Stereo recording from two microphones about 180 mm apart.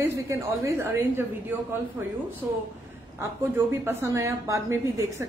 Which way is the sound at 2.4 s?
10° right (ahead or behind).